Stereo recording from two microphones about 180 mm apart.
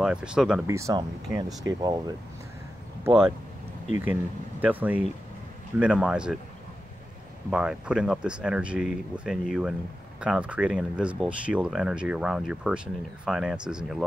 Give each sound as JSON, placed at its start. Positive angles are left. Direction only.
{"t": 0.0, "sound": "speech", "side_deg": -5}
{"t": 0.7, "sound": "speech", "side_deg": -15}
{"t": 7.4, "sound": "speech", "side_deg": -5}